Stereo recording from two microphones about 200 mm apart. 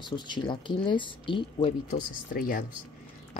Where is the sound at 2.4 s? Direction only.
45° left (ahead or behind).